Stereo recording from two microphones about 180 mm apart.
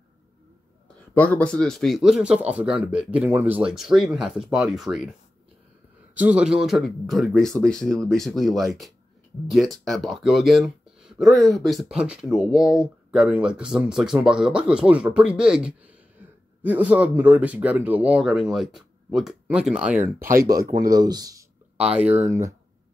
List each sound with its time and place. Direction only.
1.1 s speech: 10° left (ahead or behind)
6.1 s speech: 5° right (ahead or behind)
20.2 s speech: 55° right (ahead or behind)
20.6 s speech: 20° right (ahead or behind)